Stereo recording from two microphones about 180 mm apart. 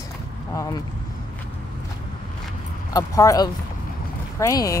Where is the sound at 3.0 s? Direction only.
20° left (ahead or behind).